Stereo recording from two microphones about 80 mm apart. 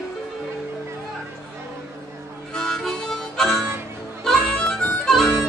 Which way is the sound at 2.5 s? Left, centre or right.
Centre.